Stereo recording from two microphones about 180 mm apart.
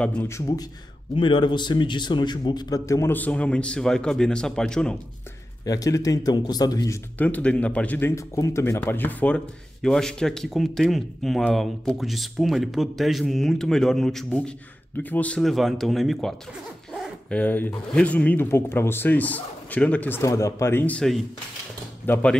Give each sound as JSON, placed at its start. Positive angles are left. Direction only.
{"t": 0.0, "sound": "speech", "side_deg": 10}
{"t": 1.1, "sound": "speech", "side_deg": 30}
{"t": 5.7, "sound": "a man's voice", "side_deg": 20}
{"t": 7.2, "sound": "a man's voice", "side_deg": 10}